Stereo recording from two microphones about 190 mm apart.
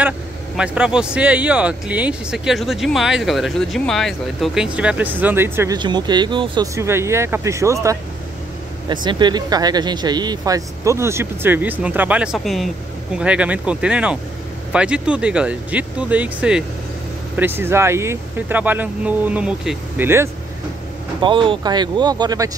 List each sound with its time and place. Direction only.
0.6 s speech: 5° right (ahead or behind)
5.8 s speech: 25° right (ahead or behind); by 20.1 s 5° right (ahead or behind)
21.2 s speech: 25° right (ahead or behind)